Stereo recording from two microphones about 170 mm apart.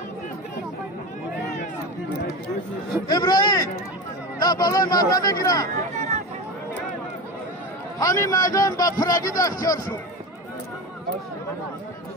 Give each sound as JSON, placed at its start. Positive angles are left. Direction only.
{"t": 3.1, "sound": "a man's voice", "side_deg": 25}
{"t": 5.8, "sound": "a sound", "side_deg": -45}
{"t": 8.0, "sound": "a man's voice", "side_deg": 20}